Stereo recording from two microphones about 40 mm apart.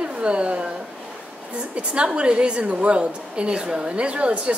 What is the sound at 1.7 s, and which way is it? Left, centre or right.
A woman's voice, right.